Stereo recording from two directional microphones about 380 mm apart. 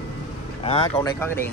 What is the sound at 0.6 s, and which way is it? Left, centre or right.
Speech, centre.